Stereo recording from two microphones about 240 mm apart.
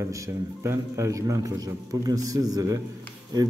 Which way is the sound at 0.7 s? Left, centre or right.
Centre.